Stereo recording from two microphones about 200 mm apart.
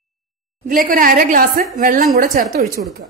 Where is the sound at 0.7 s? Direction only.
45° right (ahead or behind).